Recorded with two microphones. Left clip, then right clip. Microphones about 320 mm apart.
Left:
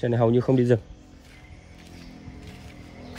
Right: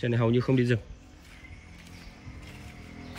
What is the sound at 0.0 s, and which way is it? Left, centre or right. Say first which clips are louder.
Speech: left 5 dB; centre.